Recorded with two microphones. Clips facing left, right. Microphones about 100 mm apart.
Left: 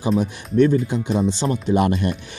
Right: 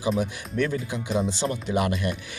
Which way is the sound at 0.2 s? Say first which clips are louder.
Left 9 dB; 30° left (ahead or behind).